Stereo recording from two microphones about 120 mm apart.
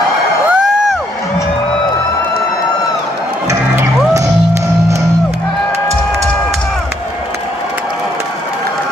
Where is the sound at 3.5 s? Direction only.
25° right (ahead or behind).